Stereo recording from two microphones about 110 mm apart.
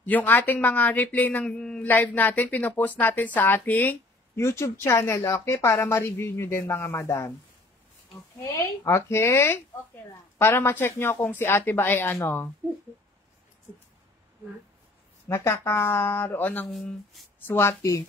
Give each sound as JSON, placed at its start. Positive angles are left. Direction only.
{"t": 0.0, "sound": "a woman's voice", "side_deg": 15}
{"t": 8.5, "sound": "a woman's voice", "side_deg": 25}
{"t": 15.2, "sound": "a woman's voice", "side_deg": 25}
{"t": 16.7, "sound": "speech", "side_deg": 0}
{"t": 17.5, "sound": "a woman's voice", "side_deg": 20}